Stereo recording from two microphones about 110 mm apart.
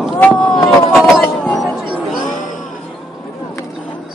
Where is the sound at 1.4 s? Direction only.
Centre (ahead or behind).